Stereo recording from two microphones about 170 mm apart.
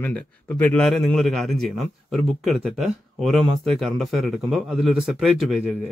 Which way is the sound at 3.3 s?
35° right (ahead or behind).